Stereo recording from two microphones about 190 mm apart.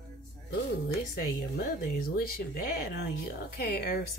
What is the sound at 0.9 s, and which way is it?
A woman's voice, 55° left (ahead or behind).